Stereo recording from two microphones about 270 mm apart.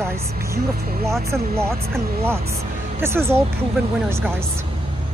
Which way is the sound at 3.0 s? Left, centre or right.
Centre.